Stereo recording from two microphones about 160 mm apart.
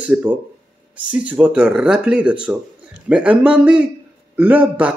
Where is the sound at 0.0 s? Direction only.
10° right (ahead or behind).